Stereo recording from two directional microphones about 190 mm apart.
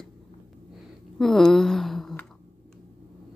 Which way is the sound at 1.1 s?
Centre (ahead or behind).